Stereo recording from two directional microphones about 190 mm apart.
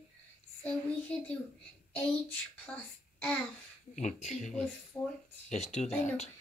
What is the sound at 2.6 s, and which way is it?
Speech, 5° left (ahead or behind).